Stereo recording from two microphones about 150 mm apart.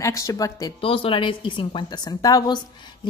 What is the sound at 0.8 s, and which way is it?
A woman's voice, 40° left (ahead or behind).